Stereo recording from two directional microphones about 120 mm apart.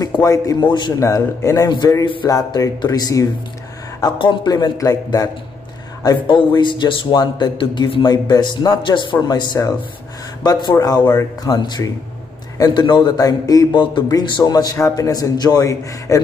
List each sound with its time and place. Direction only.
0.1 s a man's voice: 30° left (ahead or behind)
0.9 s speech: 25° left (ahead or behind)
4.0 s a man's voice: 40° left (ahead or behind)
6.2 s a man's voice: 40° left (ahead or behind)